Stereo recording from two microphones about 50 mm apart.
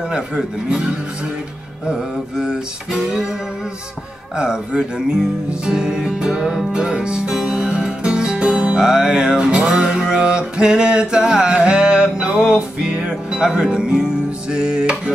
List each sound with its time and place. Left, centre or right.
1.9 s music: centre
4.4 s music: centre